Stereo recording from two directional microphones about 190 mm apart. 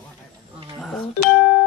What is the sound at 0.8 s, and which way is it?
Speech, centre (ahead or behind).